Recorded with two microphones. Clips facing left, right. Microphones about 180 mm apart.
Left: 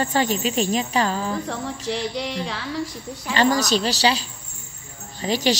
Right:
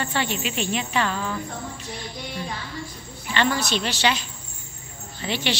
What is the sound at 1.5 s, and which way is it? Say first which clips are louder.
Music: left 7 dB; 90° left.